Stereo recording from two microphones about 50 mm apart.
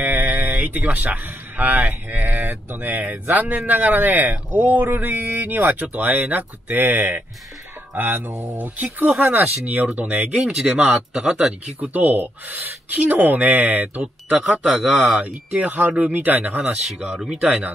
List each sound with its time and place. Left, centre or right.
0.0 s a sound: right
0.9 s speech: right
10.4 s speech: centre
11.8 s speech: right
14.6 s speech: centre
15.6 s speech: right
17.0 s speech: centre